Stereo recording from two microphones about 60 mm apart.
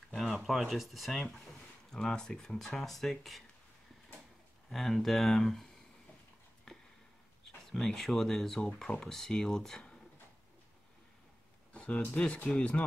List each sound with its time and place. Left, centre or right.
0.1 s speech: centre
4.6 s speech: centre
6.7 s a sound: centre
7.4 s speech: centre
11.7 s a sound: centre
12.1 s speech: centre